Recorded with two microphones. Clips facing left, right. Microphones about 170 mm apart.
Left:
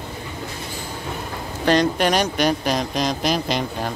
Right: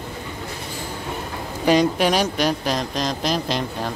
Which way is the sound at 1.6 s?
10° right (ahead or behind).